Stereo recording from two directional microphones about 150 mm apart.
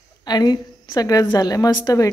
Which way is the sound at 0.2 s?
25° left (ahead or behind).